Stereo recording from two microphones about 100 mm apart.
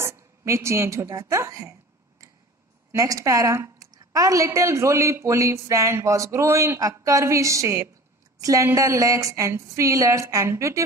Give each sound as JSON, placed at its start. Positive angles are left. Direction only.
{"t": 0.0, "sound": "a woman's voice", "side_deg": -30}